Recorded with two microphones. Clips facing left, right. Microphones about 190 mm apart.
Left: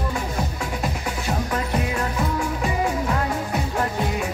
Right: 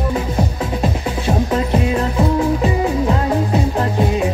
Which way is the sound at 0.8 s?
25° right (ahead or behind).